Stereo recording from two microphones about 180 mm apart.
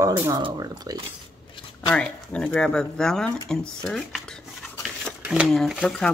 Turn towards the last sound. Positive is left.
turn(degrees=5)  # may be behind; listen again after turning